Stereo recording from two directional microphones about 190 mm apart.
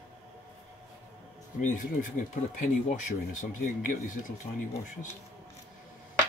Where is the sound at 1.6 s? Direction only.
45° left (ahead or behind).